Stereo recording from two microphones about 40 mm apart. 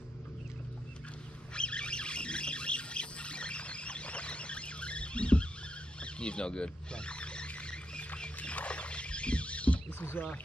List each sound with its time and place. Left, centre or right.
1.5 s squawk: left
5.9 s a sound: left
8.4 s rodents: left
9.9 s rowboat: left